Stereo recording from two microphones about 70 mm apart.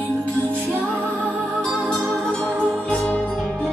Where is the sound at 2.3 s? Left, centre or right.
Centre.